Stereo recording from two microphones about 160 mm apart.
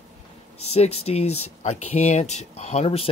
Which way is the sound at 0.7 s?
40° left (ahead or behind).